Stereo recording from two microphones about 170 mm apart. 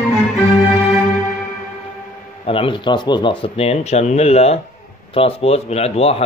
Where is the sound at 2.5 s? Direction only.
30° left (ahead or behind).